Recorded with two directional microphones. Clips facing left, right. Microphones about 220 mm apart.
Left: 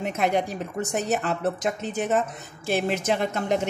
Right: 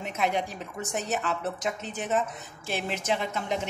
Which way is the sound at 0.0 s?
45° left (ahead or behind).